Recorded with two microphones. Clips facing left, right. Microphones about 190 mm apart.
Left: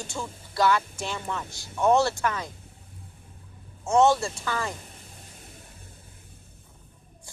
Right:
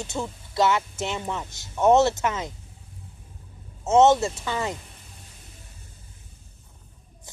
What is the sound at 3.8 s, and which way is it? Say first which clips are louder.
Speech: right 3 dB; 20° right (ahead or behind).